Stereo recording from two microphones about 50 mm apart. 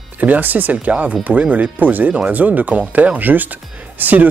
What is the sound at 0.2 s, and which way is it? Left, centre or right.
A man's voice, right.